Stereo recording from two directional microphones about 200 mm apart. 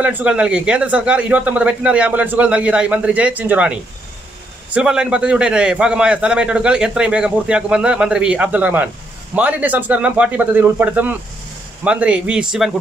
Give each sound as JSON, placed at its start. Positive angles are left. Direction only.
{"t": 0.0, "sound": "a man's voice", "side_deg": -5}